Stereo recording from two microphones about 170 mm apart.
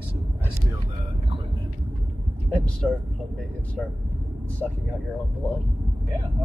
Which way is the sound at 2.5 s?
5° left (ahead or behind).